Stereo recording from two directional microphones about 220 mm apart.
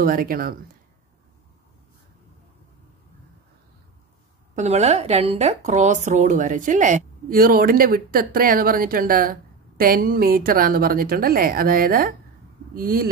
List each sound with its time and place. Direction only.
0.0 s a woman's voice: 40° right (ahead or behind)
4.6 s a woman's voice: 30° right (ahead or behind)